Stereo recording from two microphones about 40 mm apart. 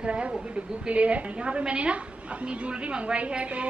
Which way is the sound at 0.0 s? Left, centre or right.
Right.